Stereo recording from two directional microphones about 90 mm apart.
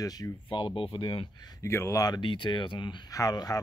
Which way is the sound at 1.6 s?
30° left (ahead or behind).